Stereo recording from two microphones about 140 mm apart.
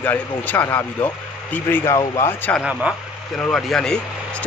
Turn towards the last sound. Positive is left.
turn(degrees=5)  # may be behind; listen again after turning